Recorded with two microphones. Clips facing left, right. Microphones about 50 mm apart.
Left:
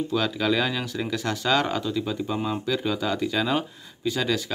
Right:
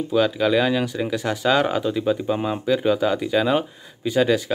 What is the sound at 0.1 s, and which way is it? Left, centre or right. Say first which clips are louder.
Speech: right 7 dB; centre.